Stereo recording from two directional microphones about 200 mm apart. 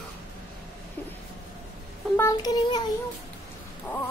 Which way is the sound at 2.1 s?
15° left (ahead or behind).